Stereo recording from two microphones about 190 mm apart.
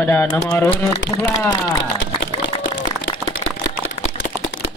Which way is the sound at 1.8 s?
75° left (ahead or behind).